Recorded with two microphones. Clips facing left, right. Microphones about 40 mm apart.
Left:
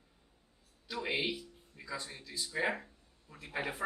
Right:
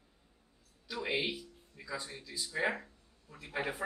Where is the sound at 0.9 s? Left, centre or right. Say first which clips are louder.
Even; centre.